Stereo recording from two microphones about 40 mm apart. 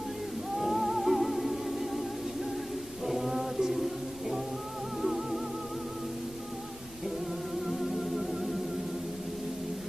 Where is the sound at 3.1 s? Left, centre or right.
Centre.